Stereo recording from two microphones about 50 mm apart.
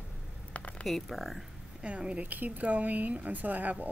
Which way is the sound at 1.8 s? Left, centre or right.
Right.